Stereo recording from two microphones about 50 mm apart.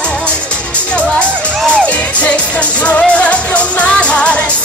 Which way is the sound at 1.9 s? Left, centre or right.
Left.